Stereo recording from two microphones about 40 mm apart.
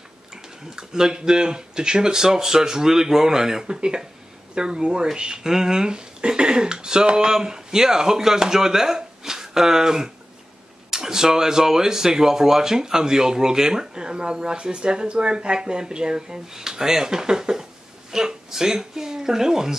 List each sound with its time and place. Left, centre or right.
0.7 s speech: centre